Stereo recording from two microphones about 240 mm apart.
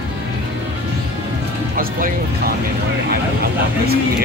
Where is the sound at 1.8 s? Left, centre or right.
Right.